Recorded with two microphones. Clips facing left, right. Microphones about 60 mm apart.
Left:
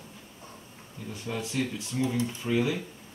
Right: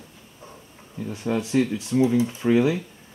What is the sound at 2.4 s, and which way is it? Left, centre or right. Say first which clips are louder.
Speech: right 8 dB; right.